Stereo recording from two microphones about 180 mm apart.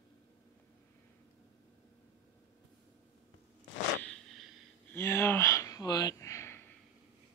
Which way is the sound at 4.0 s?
5° left (ahead or behind).